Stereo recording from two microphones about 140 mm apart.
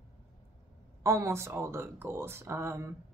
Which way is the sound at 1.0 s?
20° right (ahead or behind).